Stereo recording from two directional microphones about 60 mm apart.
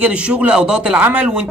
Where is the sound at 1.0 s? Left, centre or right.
Right.